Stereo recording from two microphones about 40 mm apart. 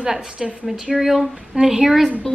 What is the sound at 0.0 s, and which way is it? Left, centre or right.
A woman's voice, centre.